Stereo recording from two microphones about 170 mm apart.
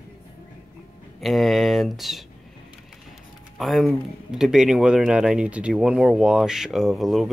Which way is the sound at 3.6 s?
Centre (ahead or behind).